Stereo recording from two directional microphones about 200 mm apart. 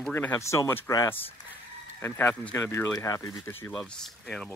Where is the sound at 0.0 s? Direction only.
10° left (ahead or behind).